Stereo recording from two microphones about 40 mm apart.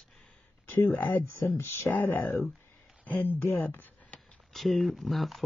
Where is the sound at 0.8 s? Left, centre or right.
Left.